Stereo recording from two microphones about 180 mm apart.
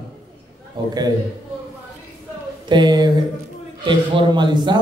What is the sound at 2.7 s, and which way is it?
Speech, 25° right (ahead or behind).